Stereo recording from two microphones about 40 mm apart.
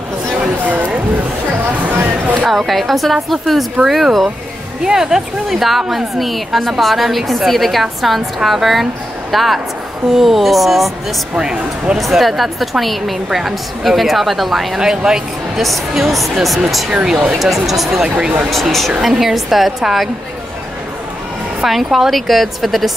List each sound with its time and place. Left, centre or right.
0.7 s a sound: right
2.5 s a woman's voice: centre
4.8 s a woman's voice: centre
11.3 s speech: centre
12.0 s a woman's voice: centre
14.8 s speech: centre
15.5 s a woman's voice: centre
18.0 s speech: right
18.5 s a woman's voice: centre
18.9 s a woman's voice: centre
21.6 s a woman's voice: centre